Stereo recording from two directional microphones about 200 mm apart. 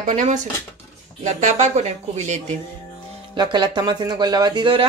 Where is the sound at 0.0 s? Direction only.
40° right (ahead or behind).